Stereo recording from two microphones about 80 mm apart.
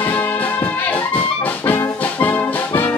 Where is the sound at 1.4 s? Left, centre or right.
Left.